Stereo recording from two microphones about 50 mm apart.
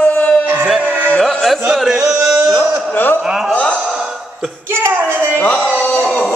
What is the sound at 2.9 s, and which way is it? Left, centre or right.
Speech, left.